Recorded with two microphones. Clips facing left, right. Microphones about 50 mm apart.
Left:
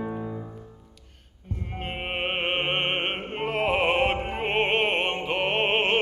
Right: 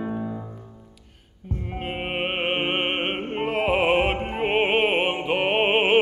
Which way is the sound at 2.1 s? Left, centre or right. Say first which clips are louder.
Right 1 dB; centre.